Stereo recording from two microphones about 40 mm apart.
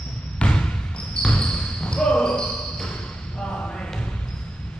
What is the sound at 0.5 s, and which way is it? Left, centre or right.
Basketball bounce, left.